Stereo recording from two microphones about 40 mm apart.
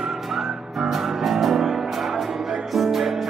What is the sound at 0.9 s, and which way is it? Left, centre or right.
Music, centre.